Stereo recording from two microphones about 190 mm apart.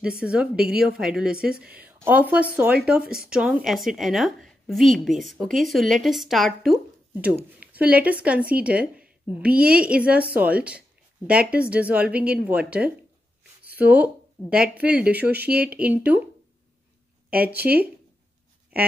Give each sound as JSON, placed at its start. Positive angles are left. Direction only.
{"t": 0.0, "sound": "a woman's voice", "side_deg": -5}
{"t": 3.0, "sound": "speech", "side_deg": -50}
{"t": 3.3, "sound": "a woman's voice", "side_deg": -5}
{"t": 17.6, "sound": "a woman's voice", "side_deg": -5}